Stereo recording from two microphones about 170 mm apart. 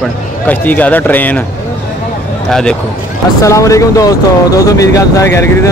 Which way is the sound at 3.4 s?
20° left (ahead or behind).